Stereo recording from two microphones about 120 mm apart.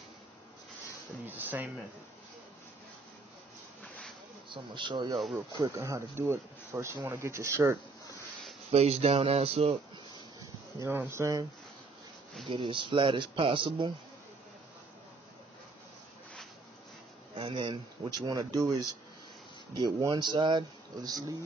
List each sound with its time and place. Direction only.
1.2 s speech: 15° right (ahead or behind)
4.5 s speech: 40° right (ahead or behind)
5.5 s speech: 25° right (ahead or behind)
8.7 s speech: 60° right (ahead or behind)
10.8 s speech: 20° right (ahead or behind)
12.4 s speech: 45° right (ahead or behind)
17.4 s speech: 45° right (ahead or behind)
19.7 s speech: 35° right (ahead or behind)